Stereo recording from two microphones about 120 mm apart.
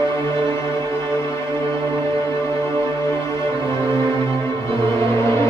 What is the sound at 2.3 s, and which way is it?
Music, 25° left (ahead or behind).